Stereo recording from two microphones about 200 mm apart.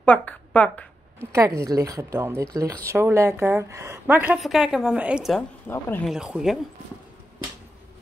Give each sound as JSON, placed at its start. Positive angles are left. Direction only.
{"t": 0.0, "sound": "speech", "side_deg": 5}
{"t": 1.3, "sound": "speech", "side_deg": -15}